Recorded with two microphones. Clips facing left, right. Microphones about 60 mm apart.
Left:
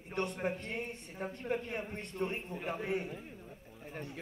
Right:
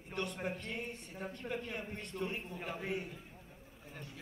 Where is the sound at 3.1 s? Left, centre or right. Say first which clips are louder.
Left 6 dB; left.